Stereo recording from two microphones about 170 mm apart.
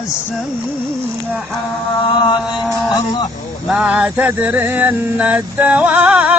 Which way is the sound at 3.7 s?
10° right (ahead or behind).